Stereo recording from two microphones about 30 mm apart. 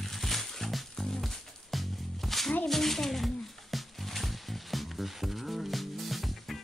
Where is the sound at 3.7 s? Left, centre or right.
Centre.